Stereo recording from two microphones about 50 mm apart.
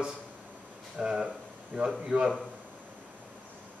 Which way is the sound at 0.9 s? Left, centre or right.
Centre.